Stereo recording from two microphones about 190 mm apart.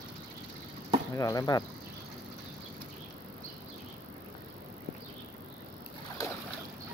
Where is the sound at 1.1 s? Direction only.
20° left (ahead or behind).